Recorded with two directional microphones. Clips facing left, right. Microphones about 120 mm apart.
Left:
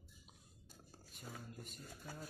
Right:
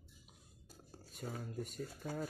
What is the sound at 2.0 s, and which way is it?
Speech, 85° right.